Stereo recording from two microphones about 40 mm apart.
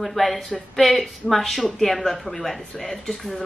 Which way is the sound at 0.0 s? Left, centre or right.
Centre.